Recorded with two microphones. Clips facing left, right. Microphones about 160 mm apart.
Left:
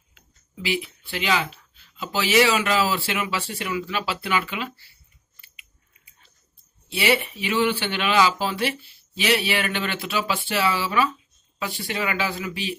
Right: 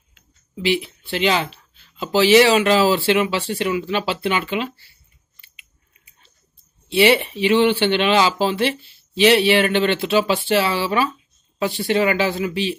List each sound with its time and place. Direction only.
0.6 s speech: 30° right (ahead or behind)
6.9 s speech: 25° right (ahead or behind)